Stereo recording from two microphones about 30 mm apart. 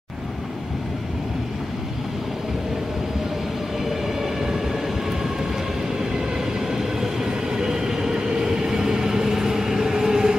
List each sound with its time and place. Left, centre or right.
4.2 s music: centre
6.7 s train: centre